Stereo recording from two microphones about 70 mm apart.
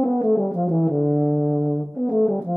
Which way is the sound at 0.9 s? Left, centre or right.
Centre.